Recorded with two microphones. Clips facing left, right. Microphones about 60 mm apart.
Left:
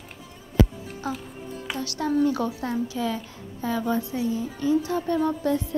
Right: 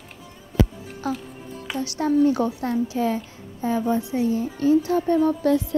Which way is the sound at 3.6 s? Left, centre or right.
Right.